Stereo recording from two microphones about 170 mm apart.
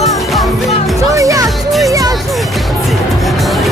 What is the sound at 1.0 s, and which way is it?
Music, 20° right (ahead or behind).